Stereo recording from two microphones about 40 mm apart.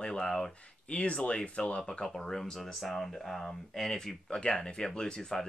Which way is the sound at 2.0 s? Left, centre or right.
Centre.